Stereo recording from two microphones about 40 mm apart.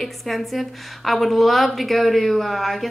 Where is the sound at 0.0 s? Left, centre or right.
Centre.